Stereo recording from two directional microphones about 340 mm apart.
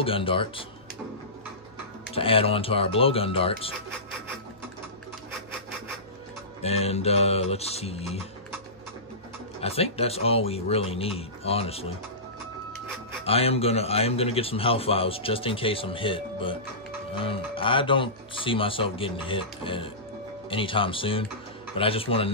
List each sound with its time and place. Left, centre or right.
0.0 s a man's voice: centre
2.1 s a man's voice: centre
6.6 s a man's voice: centre
9.6 s a man's voice: centre
13.2 s a man's voice: centre